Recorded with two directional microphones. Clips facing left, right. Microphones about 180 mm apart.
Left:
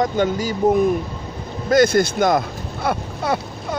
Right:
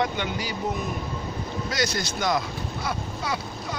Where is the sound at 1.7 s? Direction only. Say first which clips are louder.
Left 15 dB; 50° left (ahead or behind).